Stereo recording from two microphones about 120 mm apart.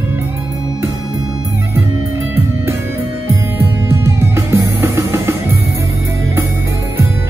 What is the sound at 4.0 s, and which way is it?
Music, 20° right (ahead or behind).